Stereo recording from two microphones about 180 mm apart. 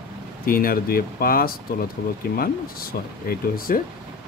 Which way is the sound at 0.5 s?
55° left (ahead or behind).